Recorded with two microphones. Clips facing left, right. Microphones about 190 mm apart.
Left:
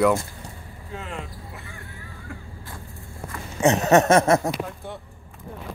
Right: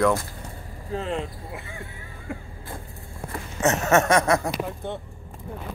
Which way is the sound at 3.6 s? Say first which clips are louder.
Left 3 dB; 15° left (ahead or behind).